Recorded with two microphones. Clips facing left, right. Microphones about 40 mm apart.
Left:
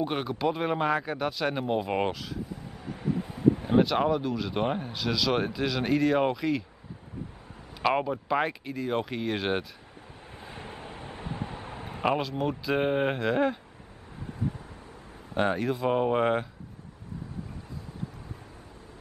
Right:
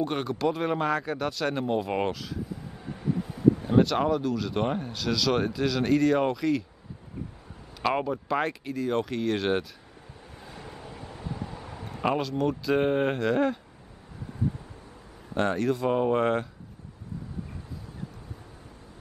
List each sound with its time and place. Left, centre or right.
0.0 s speech: centre
3.0 s speech: left
7.8 s speech: centre
10.4 s a sound: left
12.0 s speech: centre
15.3 s speech: centre